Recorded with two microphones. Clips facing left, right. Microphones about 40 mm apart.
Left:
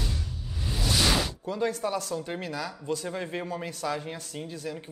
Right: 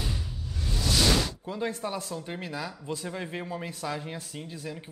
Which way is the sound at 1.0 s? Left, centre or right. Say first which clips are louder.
Right 1 dB; centre.